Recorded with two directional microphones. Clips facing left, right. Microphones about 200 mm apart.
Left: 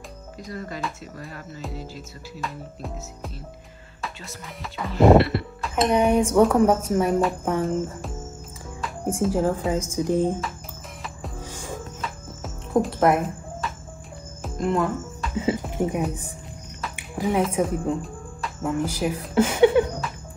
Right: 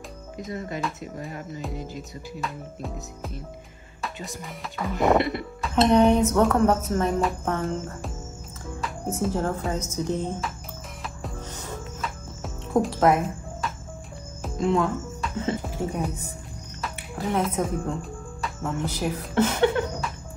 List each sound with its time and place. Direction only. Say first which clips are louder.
0.5 s speech: right 1 dB; 20° right (ahead or behind)
2.4 s music: left 1 dB; centre (ahead or behind)
4.5 s music: even; centre (ahead or behind)
5.8 s speech: right 1 dB; 10° left (ahead or behind)
9.2 s speech: left 4 dB; 5° left (ahead or behind)
11.0 s music: even; 5° left (ahead or behind)
14.4 s speech: even; centre (ahead or behind)
16.9 s a sound: left 3 dB; 15° left (ahead or behind)
17.4 s speech: left 2 dB; 5° left (ahead or behind)